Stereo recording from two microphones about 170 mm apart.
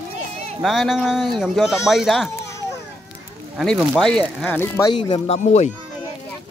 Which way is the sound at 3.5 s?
Centre (ahead or behind).